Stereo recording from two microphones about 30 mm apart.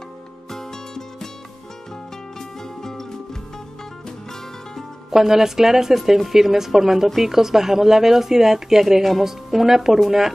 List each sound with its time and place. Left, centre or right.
0.5 s music: centre
2.6 s music: centre
5.1 s speech: centre